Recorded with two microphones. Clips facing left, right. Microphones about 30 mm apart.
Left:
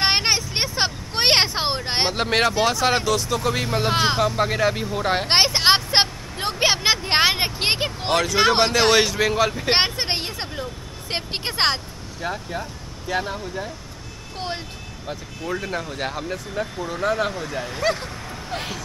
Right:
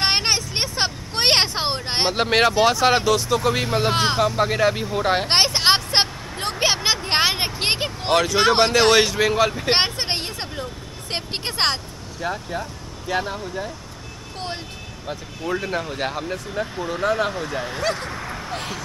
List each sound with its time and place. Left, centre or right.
0.0 s vehicle: centre
2.1 s speech: centre
15.0 s speech: centre
18.1 s a sound: right
18.5 s speech: centre